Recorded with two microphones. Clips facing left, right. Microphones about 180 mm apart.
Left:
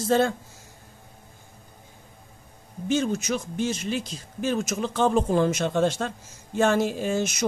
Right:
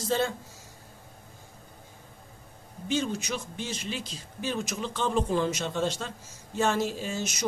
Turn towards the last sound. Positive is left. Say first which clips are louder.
# left 7 dB
turn(degrees=55)  # may be behind; listen again after turning